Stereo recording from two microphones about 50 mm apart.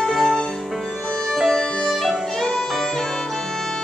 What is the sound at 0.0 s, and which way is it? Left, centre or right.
Music, centre.